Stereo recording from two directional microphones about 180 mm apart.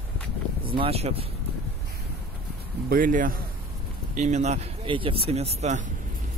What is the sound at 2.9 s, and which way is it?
Speech, 50° right (ahead or behind).